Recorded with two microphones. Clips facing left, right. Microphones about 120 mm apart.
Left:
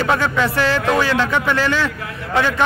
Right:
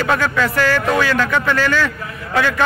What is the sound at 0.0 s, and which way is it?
A man's voice, 20° left (ahead or behind).